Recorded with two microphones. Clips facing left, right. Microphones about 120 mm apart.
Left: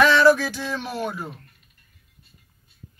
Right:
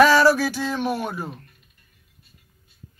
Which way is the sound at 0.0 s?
40° right (ahead or behind).